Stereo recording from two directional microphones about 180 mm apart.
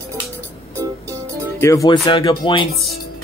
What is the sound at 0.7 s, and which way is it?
Music, 15° right (ahead or behind).